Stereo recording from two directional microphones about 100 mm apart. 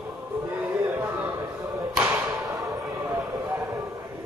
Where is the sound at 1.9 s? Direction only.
25° right (ahead or behind).